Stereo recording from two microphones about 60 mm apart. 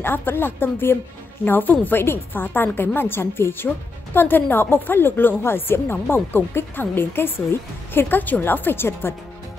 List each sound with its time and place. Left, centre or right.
0.0 s a woman's voice: left